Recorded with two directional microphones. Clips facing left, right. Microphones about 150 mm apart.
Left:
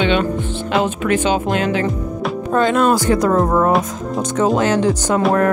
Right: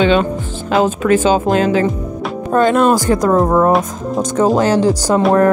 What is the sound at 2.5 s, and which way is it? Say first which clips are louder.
Speech: right 3 dB; 45° right (ahead or behind).